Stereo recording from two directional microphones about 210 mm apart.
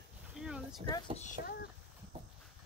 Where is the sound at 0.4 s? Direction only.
Centre (ahead or behind).